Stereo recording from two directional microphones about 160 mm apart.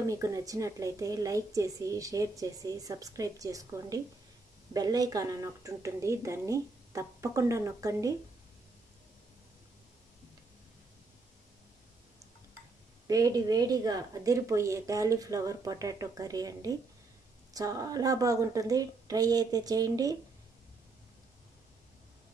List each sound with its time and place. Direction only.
0.0 s a woman's voice: 20° right (ahead or behind)
13.0 s a woman's voice: 20° right (ahead or behind)